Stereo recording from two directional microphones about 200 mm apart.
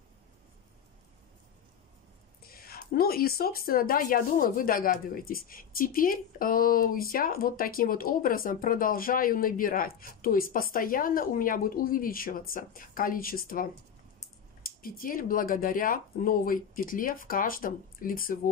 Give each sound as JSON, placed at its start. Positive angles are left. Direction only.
{"t": 2.4, "sound": "speech", "side_deg": 50}